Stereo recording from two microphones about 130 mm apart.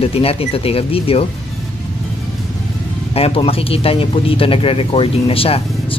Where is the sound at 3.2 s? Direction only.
50° left (ahead or behind).